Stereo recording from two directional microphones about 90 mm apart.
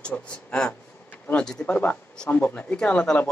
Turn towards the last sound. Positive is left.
turn(degrees=10)  # may be behind; listen again after turning